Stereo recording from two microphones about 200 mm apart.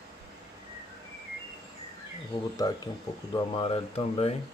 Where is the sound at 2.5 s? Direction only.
20° left (ahead or behind).